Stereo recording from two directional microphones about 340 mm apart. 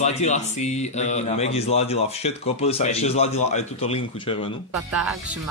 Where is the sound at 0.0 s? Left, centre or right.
Centre.